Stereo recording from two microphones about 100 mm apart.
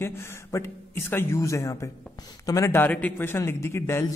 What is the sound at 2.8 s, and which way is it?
Speech, 15° left (ahead or behind).